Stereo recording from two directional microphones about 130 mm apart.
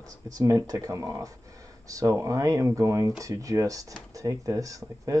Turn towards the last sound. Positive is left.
turn(degrees=-25)  # may be behind; listen again after turning